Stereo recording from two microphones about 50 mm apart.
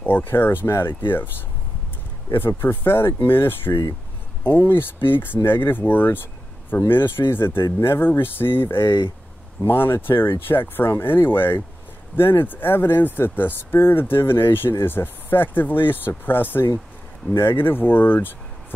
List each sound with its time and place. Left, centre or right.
0.0 s speech: left
2.3 s speech: left